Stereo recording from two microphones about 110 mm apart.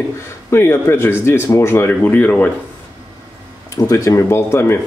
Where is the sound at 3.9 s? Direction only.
25° left (ahead or behind).